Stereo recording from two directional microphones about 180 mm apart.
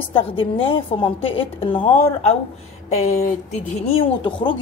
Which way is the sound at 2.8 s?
40° left (ahead or behind).